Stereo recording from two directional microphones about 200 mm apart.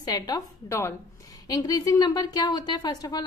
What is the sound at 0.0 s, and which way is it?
A woman's voice, 15° left (ahead or behind).